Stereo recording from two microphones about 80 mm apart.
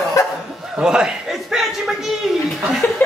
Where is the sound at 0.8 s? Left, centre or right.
Centre.